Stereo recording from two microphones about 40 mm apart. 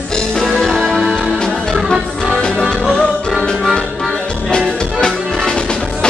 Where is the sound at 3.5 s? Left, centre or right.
Centre.